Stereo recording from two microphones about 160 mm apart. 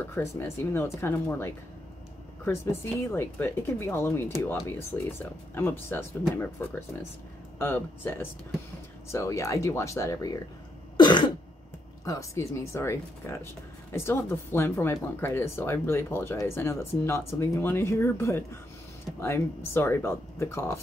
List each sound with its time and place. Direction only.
0.1 s speech: 15° left (ahead or behind)
11.0 s cough: 30° left (ahead or behind)
12.0 s speech: 20° left (ahead or behind)